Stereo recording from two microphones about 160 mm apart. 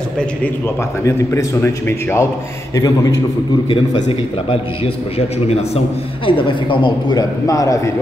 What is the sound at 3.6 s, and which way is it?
A man's voice, 35° left (ahead or behind).